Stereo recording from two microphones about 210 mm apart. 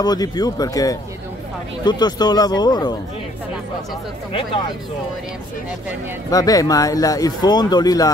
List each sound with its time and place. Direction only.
0.0 s speech: 20° left (ahead or behind)
6.3 s speech: 15° left (ahead or behind)